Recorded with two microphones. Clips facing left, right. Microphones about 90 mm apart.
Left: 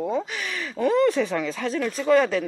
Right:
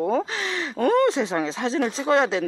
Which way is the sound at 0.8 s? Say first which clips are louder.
Right 1 dB; 60° right (ahead or behind).